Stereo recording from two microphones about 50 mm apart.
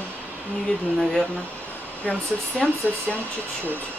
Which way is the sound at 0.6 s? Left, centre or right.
Centre.